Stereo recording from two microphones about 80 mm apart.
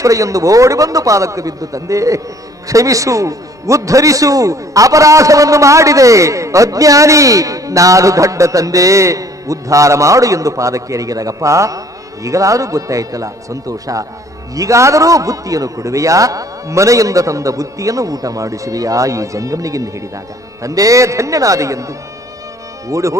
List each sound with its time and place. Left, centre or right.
0.0 s a man's voice: right